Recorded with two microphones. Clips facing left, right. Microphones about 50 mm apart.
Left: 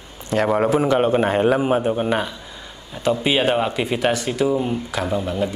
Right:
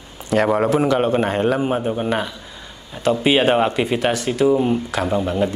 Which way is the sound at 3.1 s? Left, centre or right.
Centre.